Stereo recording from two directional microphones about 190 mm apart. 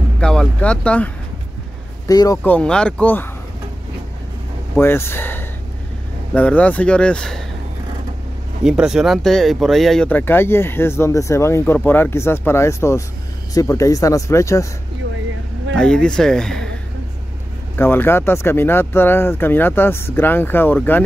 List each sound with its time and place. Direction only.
0.2 s speech: 5° left (ahead or behind)
2.0 s speech: 20° left (ahead or behind)
4.7 s speech: 10° left (ahead or behind)
8.6 s speech: 5° right (ahead or behind); by 14.7 s 15° left (ahead or behind)
15.7 s speech: 5° left (ahead or behind)
17.7 s speech: 10° left (ahead or behind)